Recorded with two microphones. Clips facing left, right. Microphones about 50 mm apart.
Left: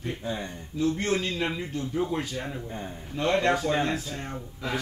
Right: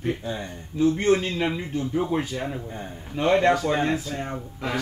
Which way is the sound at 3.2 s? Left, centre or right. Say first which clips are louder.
Right 4 dB; right.